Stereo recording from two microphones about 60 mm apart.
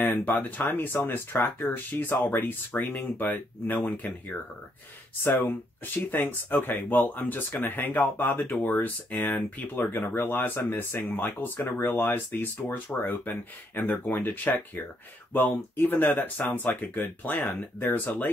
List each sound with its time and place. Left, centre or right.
0.1 s speech: left
5.2 s speech: left